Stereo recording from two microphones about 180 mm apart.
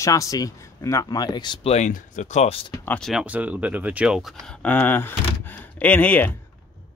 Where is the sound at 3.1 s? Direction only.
5° right (ahead or behind).